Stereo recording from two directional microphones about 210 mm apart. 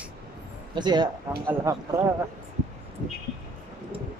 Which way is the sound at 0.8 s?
20° right (ahead or behind).